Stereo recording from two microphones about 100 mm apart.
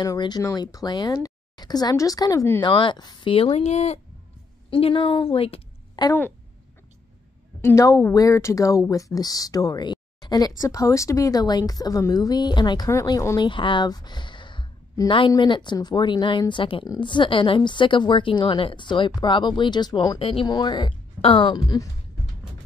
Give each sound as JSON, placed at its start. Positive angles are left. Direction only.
{"t": 0.6, "sound": "speech", "side_deg": 40}
{"t": 2.6, "sound": "speech", "side_deg": 55}
{"t": 3.3, "sound": "speech", "side_deg": 80}
{"t": 4.6, "sound": "speech", "side_deg": 70}
{"t": 6.0, "sound": "a woman's voice", "side_deg": 45}
{"t": 7.6, "sound": "a woman's voice", "side_deg": 30}
{"t": 20.2, "sound": "speech", "side_deg": 70}
{"t": 20.4, "sound": "a woman's voice", "side_deg": 45}
{"t": 21.2, "sound": "a woman's voice", "side_deg": 60}